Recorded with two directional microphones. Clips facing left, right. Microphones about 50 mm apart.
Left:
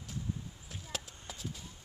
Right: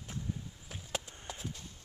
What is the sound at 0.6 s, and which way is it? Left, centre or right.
Chop, centre.